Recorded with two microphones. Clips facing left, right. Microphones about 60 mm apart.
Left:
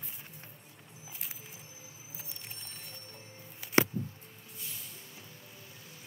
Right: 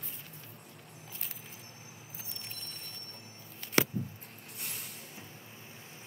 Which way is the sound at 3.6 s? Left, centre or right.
Centre.